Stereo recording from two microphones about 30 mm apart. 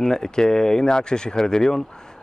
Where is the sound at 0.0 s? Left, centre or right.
Centre.